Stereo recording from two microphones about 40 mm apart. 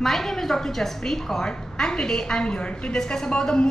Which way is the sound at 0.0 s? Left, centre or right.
Centre.